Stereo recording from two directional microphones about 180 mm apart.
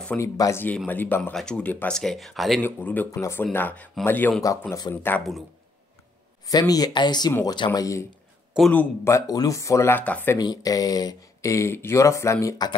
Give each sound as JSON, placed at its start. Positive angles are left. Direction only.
{"t": 0.2, "sound": "speech", "side_deg": 15}
{"t": 6.4, "sound": "speech", "side_deg": 20}
{"t": 8.5, "sound": "speech", "side_deg": 5}
{"t": 9.0, "sound": "speech", "side_deg": 20}